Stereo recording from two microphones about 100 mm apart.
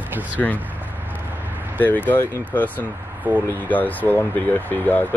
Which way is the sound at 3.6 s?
15° left (ahead or behind).